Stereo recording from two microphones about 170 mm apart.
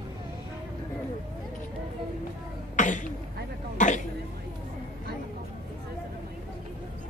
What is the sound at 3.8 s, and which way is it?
Throat clearing, 45° left (ahead or behind).